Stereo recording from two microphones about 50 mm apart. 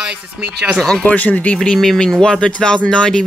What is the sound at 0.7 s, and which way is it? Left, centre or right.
Speech, centre.